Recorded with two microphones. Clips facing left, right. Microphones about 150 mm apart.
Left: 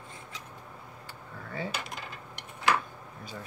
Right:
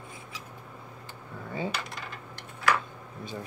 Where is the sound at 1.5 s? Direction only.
15° right (ahead or behind).